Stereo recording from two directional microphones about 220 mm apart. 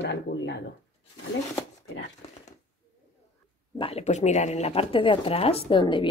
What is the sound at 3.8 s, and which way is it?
Speech, 25° left (ahead or behind).